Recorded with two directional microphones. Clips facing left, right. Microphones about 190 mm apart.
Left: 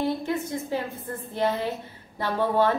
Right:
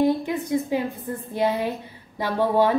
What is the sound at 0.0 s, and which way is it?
A woman's voice, 15° right (ahead or behind).